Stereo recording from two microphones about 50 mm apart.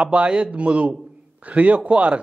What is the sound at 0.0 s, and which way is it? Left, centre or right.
A man's voice, right.